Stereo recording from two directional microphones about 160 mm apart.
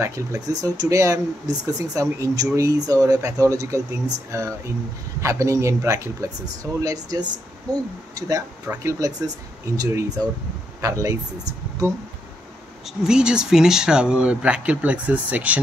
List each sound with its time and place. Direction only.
0.0 s speech: 20° right (ahead or behind)
12.8 s speech: 5° right (ahead or behind)